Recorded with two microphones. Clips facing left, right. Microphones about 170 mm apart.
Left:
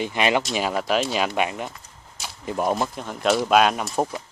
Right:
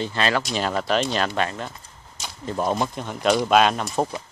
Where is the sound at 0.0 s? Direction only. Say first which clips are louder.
Left 2 dB; 15° left (ahead or behind).